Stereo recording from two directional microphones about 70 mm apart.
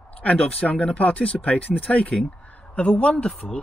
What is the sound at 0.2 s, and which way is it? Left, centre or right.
Speech, centre.